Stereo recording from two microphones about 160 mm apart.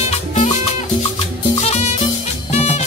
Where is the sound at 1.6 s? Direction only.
45° left (ahead or behind).